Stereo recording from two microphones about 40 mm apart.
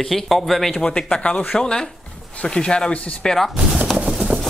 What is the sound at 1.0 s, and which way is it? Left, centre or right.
Speech, left.